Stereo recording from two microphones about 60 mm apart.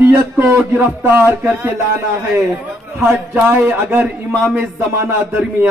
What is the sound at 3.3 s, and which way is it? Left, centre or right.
Speech, right.